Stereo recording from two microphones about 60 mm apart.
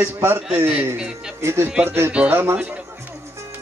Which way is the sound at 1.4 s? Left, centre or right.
Right.